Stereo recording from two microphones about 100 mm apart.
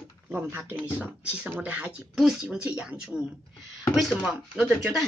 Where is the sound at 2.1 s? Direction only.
5° right (ahead or behind).